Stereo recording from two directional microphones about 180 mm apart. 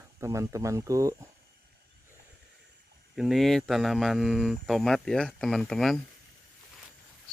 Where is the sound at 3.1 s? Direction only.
Centre (ahead or behind).